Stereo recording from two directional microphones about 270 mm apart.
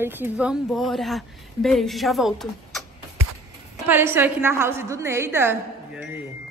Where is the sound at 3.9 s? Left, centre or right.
Centre.